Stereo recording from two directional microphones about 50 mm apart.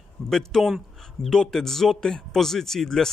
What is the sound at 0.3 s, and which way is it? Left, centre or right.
Speech, centre.